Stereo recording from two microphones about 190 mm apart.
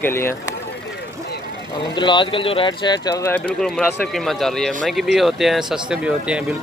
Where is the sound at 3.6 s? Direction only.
Centre (ahead or behind).